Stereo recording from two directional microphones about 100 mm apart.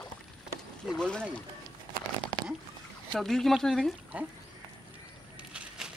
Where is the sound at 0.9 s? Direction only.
10° left (ahead or behind).